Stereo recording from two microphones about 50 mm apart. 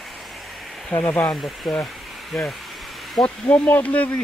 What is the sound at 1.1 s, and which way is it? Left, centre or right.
Speech, left.